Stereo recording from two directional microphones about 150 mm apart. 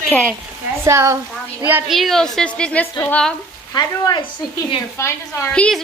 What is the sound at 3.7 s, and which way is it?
A woman's voice, 25° left (ahead or behind).